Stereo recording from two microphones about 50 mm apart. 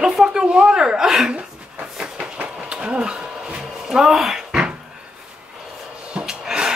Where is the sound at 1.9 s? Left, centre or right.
Centre.